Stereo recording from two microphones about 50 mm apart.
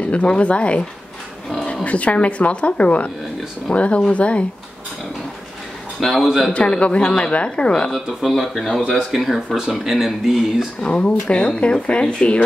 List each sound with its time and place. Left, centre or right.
0.0 s speech: left
1.9 s speech: left
5.9 s speech: centre
6.5 s speech: left
7.9 s speech: centre
10.8 s speech: left